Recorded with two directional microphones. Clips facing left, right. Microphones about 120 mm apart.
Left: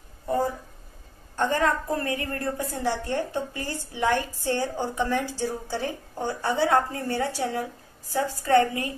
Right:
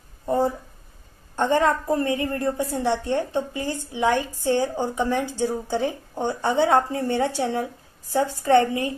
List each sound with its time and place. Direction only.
1.3 s a woman's voice: 25° right (ahead or behind)